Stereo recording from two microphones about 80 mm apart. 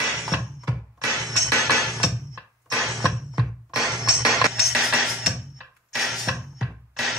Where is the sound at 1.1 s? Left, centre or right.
Centre.